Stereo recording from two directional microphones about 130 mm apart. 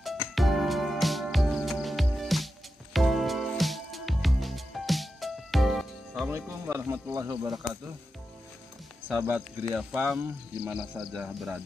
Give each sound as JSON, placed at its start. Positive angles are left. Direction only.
{"t": 0.0, "sound": "music", "side_deg": 0}
{"t": 6.2, "sound": "speech", "side_deg": -20}
{"t": 9.1, "sound": "speech", "side_deg": -10}